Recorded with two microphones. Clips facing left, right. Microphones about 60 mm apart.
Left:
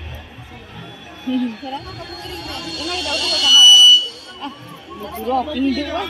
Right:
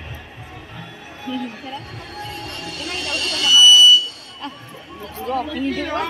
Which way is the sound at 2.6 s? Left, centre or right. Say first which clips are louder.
Left 4 dB; right.